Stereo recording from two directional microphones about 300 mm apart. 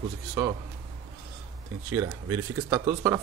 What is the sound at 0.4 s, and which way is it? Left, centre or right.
Speech, centre.